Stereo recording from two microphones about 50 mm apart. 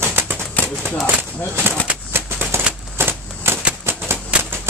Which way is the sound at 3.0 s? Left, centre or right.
Right.